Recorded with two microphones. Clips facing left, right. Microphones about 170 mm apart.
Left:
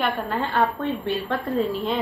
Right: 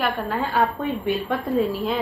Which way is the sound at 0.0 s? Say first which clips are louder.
Right 1 dB; 5° right (ahead or behind).